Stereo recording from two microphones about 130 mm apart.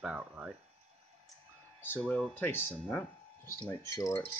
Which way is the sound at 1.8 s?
15° left (ahead or behind).